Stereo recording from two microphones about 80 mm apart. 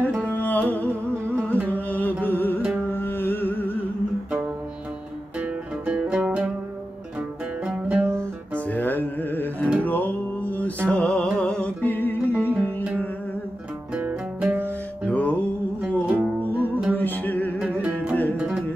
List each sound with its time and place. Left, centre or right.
0.2 s music: centre
1.3 s carnatic music: right
1.7 s music: left
5.4 s music: centre
7.6 s music: centre
8.0 s music: right
8.6 s music: left
13.9 s music: centre
15.0 s music: left
15.8 s music: centre
16.9 s music: left
17.6 s music: right